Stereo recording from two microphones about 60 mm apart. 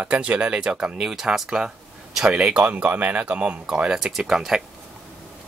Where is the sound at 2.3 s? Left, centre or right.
Right.